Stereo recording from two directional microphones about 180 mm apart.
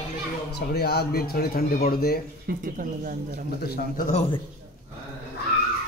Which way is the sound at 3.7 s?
50° left (ahead or behind).